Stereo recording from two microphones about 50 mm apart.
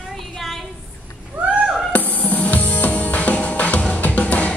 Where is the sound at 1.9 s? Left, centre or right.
Left.